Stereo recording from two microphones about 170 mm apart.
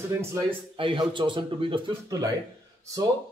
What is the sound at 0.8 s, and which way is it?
Speech, 30° right (ahead or behind).